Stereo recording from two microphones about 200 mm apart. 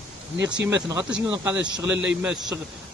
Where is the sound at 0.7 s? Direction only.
15° right (ahead or behind).